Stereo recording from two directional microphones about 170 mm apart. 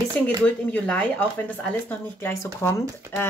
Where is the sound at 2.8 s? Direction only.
15° right (ahead or behind).